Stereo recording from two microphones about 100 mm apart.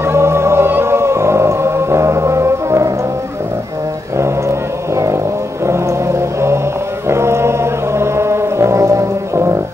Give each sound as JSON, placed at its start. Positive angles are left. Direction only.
{"t": 0.0, "sound": "music", "side_deg": -25}
{"t": 4.2, "sound": "a sound", "side_deg": -30}
{"t": 5.7, "sound": "music", "side_deg": -25}